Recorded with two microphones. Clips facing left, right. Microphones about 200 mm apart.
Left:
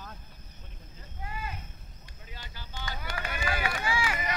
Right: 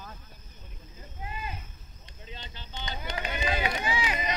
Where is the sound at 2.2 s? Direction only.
25° right (ahead or behind).